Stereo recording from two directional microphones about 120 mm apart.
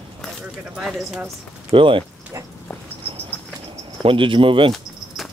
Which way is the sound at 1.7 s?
45° right (ahead or behind).